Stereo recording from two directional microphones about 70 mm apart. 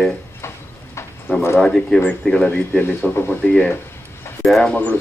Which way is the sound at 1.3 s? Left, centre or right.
Left.